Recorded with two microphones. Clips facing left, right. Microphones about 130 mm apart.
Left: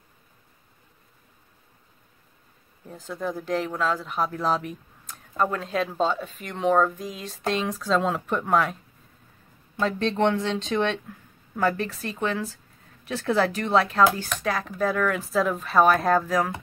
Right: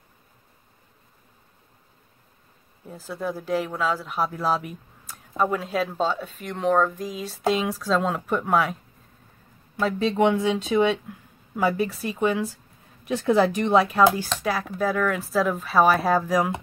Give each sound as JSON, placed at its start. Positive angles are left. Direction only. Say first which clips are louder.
{"t": 2.9, "sound": "speech", "louder": "right 1 dB", "side_deg": -5}
{"t": 9.8, "sound": "speech", "louder": "right 2 dB", "side_deg": -5}